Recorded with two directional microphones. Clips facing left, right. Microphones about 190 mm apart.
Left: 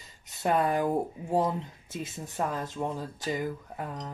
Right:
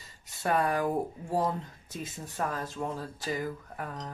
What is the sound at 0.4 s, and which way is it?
Speech, 20° left (ahead or behind).